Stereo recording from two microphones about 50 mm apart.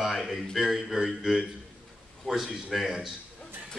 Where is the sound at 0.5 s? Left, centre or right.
Centre.